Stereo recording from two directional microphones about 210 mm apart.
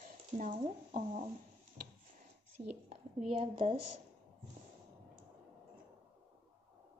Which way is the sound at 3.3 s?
25° right (ahead or behind).